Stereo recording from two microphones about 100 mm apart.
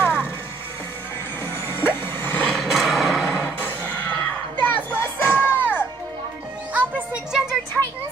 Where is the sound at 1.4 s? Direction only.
25° left (ahead or behind).